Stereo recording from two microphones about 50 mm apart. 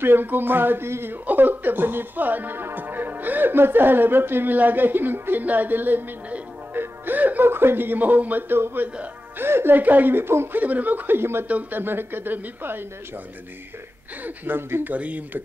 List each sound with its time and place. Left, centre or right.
0.0 s speech: right
1.1 s speech: right
7.4 s speech: right
9.4 s music: right
9.8 s speech: right
10.6 s speech: right
11.4 s speech: right
11.8 s speech: right
14.2 s speech: right
15.0 s speech: right